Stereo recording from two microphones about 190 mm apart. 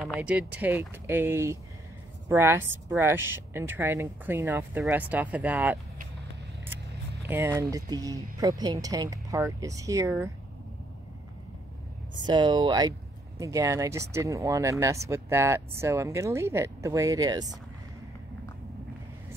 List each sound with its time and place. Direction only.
0.0 s speech: 5° right (ahead or behind)
12.3 s speech: 25° right (ahead or behind)